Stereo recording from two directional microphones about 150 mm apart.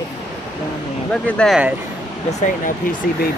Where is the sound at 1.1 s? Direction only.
5° left (ahead or behind).